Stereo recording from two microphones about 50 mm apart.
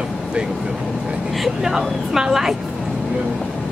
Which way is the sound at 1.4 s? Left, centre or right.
Centre.